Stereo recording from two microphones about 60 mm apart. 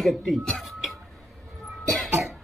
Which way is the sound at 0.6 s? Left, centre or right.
Centre.